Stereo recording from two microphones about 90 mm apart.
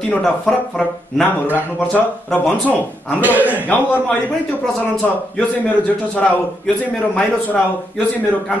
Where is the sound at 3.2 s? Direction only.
20° right (ahead or behind).